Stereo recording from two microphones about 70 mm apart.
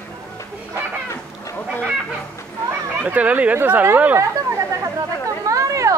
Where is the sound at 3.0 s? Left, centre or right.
Right.